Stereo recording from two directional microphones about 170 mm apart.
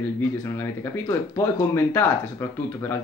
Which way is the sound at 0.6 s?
15° left (ahead or behind).